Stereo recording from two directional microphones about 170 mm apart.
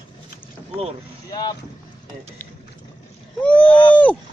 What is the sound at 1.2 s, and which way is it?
Speech, 25° left (ahead or behind).